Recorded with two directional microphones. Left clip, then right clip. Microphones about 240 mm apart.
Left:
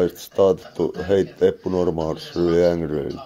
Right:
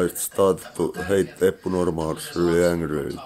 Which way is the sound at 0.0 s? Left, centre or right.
Centre.